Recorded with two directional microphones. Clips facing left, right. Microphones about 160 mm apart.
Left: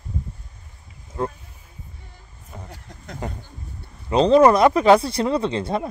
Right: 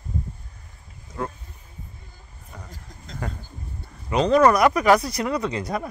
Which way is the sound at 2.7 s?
65° left (ahead or behind).